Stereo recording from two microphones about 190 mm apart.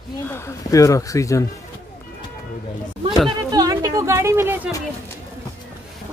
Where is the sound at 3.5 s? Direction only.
20° right (ahead or behind).